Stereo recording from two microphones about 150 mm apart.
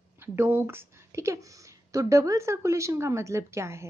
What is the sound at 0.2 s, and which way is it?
A woman's voice, 15° right (ahead or behind).